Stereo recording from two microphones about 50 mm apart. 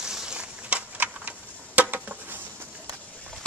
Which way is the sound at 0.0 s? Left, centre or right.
Centre.